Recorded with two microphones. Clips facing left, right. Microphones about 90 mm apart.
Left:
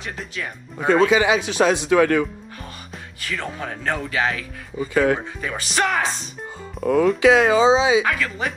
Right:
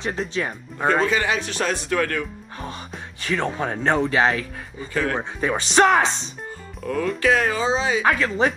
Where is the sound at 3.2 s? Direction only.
30° right (ahead or behind).